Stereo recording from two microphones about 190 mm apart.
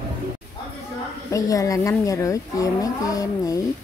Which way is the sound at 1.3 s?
20° left (ahead or behind).